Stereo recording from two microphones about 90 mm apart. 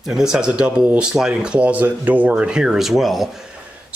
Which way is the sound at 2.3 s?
10° right (ahead or behind).